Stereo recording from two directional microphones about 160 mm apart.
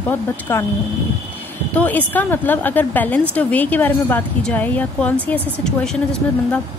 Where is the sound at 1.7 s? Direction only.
10° left (ahead or behind).